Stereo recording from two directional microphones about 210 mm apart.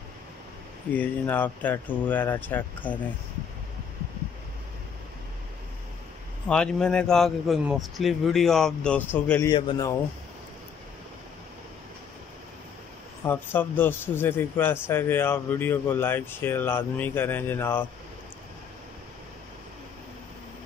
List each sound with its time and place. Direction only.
0.9 s a man's voice: 5° left (ahead or behind)
6.4 s a man's voice: 5° left (ahead or behind)
9.5 s speech: 20° left (ahead or behind)
13.2 s a man's voice: 10° left (ahead or behind)